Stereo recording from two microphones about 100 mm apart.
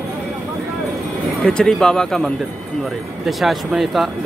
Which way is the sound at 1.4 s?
5° left (ahead or behind).